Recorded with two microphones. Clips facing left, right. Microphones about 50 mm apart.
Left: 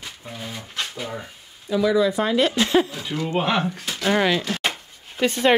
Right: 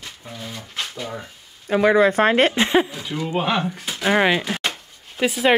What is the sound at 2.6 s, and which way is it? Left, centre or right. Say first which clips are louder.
Speech: right 1 dB; right.